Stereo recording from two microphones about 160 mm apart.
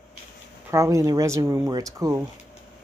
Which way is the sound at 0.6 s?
20° right (ahead or behind).